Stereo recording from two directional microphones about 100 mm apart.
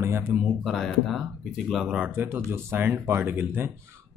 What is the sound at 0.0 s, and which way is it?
Speech, 25° right (ahead or behind).